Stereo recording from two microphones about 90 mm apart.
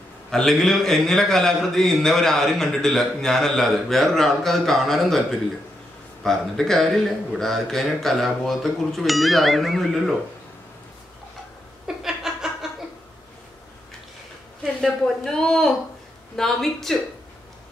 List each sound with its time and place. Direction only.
0.3 s a man's voice: 5° left (ahead or behind)
12.0 s a sound: 5° right (ahead or behind)
14.6 s a woman's voice: 5° left (ahead or behind)